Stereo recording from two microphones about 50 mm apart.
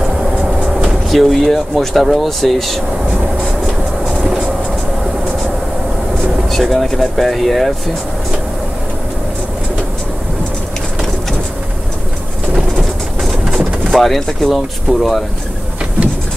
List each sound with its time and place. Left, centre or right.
0.8 s speech: centre
6.5 s speech: centre
13.2 s train: centre
13.9 s speech: centre